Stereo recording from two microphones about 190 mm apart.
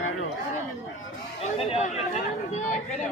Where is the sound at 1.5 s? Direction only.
30° left (ahead or behind).